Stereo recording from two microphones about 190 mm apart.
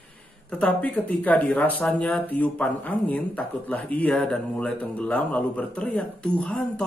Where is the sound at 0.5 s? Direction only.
5° left (ahead or behind).